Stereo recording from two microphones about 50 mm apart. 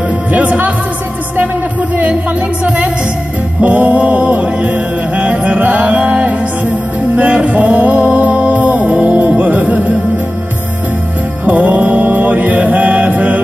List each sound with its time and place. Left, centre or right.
0.3 s music: right
3.6 s music: right
11.4 s mantra: right